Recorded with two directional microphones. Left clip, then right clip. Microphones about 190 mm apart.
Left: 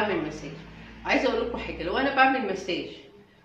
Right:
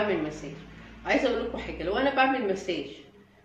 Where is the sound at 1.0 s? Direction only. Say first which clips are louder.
Left 1 dB; 10° left (ahead or behind).